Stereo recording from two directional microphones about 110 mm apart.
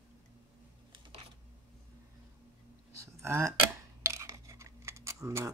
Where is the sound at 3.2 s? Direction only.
25° right (ahead or behind).